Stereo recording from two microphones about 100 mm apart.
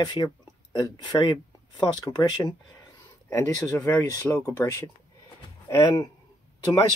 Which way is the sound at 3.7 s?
20° left (ahead or behind).